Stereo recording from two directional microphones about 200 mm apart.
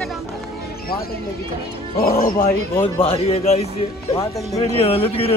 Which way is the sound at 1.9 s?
45° left (ahead or behind).